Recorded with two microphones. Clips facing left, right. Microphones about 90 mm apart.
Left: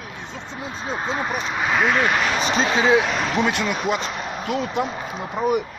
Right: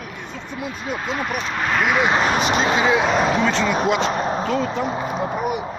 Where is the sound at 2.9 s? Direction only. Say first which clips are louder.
Right 2 dB; 25° right (ahead or behind).